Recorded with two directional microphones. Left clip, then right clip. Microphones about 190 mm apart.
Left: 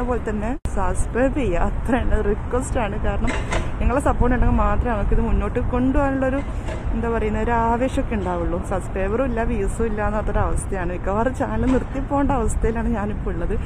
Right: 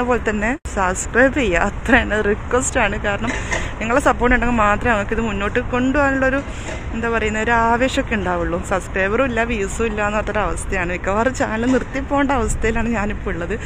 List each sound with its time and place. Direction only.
0.1 s speech: 20° right (ahead or behind)
0.4 s speech: 10° right (ahead or behind)